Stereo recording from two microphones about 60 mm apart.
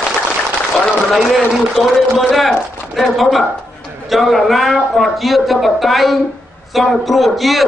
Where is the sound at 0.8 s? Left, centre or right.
Centre.